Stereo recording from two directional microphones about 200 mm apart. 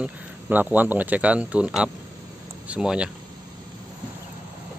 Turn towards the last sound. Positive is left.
turn(degrees=-5)  # may be behind; listen again after turning